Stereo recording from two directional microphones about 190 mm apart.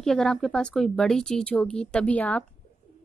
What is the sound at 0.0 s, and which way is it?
A woman's voice, 5° left (ahead or behind).